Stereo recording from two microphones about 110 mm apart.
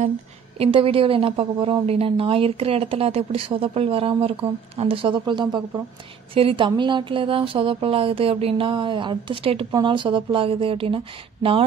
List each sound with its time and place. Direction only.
0.6 s a woman's voice: 55° right (ahead or behind)
9.8 s speech: 45° right (ahead or behind)